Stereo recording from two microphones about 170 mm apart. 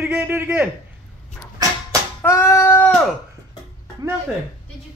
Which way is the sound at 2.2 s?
15° left (ahead or behind).